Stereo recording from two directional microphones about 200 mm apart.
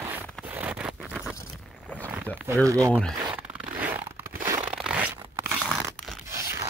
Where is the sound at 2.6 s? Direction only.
15° right (ahead or behind).